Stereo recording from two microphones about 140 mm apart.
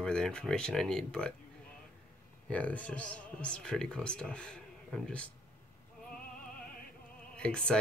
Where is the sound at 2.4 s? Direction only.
10° left (ahead or behind).